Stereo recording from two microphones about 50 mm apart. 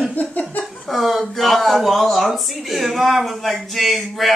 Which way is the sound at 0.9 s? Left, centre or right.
Centre.